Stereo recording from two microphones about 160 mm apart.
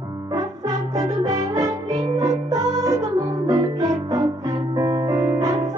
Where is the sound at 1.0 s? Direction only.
25° right (ahead or behind).